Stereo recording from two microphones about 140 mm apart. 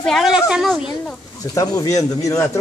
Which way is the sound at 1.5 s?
25° left (ahead or behind).